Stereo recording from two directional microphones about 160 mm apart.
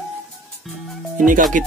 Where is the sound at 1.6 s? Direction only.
55° right (ahead or behind).